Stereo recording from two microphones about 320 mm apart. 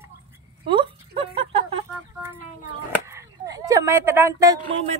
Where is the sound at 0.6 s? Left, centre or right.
Centre.